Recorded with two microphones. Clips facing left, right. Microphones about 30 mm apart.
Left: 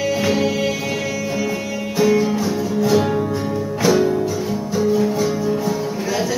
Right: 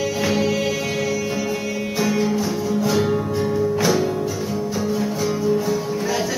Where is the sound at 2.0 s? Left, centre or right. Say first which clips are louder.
Left 5 dB; centre.